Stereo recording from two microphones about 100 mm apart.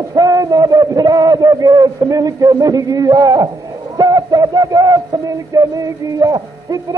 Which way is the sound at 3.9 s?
40° right (ahead or behind).